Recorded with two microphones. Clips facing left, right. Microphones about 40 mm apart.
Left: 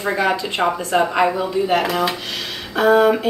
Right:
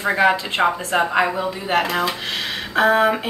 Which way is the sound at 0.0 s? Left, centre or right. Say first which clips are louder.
Right 2 dB; centre.